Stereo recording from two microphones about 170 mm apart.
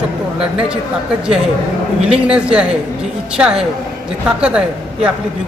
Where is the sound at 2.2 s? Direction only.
5° right (ahead or behind).